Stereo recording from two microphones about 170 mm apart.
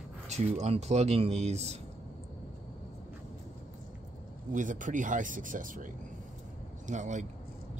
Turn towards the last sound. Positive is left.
turn(degrees=-45)  # may be behind; listen again after turning